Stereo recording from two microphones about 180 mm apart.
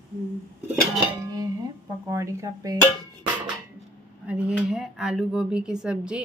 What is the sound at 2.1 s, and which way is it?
Speech, 15° right (ahead or behind).